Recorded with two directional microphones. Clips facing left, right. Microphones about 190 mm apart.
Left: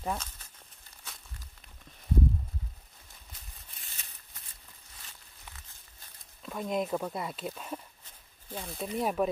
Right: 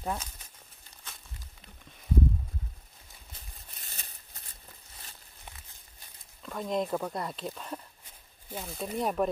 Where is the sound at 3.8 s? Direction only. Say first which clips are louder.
Right 4 dB; 35° right (ahead or behind).